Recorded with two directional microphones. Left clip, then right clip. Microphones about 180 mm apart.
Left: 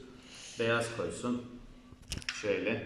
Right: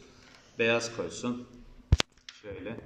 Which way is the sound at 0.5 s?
15° right (ahead or behind).